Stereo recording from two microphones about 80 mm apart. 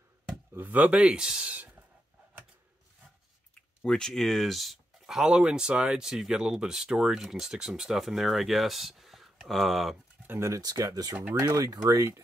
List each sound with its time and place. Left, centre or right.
0.6 s speech: right
3.5 s speech: centre
10.4 s speech: right